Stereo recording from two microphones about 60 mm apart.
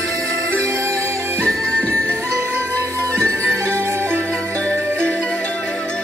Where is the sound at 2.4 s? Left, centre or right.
Right.